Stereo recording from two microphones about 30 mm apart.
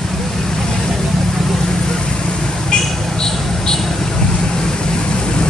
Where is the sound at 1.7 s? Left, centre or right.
Left.